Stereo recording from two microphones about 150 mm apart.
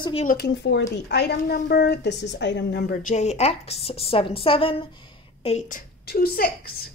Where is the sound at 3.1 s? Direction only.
45° left (ahead or behind).